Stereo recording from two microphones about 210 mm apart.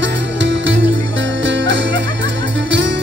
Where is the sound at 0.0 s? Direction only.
60° right (ahead or behind).